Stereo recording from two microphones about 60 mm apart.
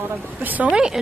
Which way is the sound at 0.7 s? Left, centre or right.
Centre.